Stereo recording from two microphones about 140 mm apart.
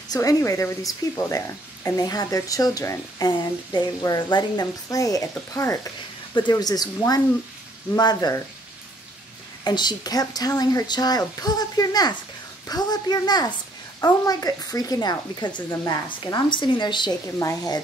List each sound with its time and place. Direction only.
0.1 s speech: 25° left (ahead or behind)
9.7 s a woman's voice: 30° left (ahead or behind)